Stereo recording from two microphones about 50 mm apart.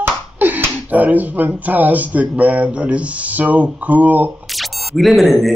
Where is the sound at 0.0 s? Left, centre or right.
Right.